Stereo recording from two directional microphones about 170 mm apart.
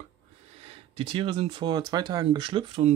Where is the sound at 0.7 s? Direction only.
35° right (ahead or behind).